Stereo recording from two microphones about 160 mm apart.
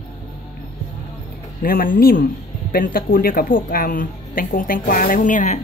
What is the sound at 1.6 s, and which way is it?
A woman's voice, 65° left (ahead or behind).